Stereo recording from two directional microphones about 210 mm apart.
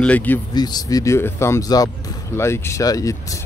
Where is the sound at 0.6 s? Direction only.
20° left (ahead or behind).